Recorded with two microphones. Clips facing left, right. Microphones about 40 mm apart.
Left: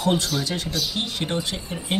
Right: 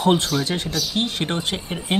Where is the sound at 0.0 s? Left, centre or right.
Right.